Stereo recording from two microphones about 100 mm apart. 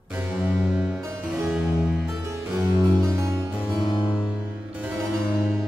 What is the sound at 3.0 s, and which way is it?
Harpsichord, 30° right (ahead or behind).